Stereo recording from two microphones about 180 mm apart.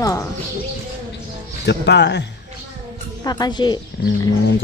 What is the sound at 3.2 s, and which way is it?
Speech, 20° left (ahead or behind).